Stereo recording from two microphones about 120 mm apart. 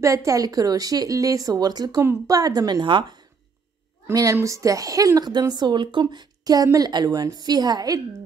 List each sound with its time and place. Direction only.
0.0 s a woman's voice: 25° right (ahead or behind)
4.1 s a woman's voice: 30° right (ahead or behind)